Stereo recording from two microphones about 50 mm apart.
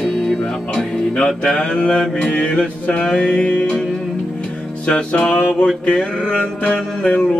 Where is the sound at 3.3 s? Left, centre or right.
Left.